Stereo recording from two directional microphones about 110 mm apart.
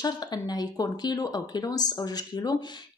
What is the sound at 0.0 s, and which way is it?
A woman's voice, 40° left (ahead or behind).